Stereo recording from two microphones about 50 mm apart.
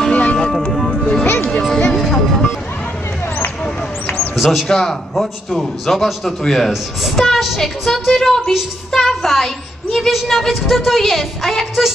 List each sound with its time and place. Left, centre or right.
0.1 s music: left
0.4 s vehicle: centre
0.7 s music: centre
1.2 s music: left
2.0 s music: centre
4.4 s a man's voice: centre
8.9 s a sound: centre
9.9 s a man's voice: centre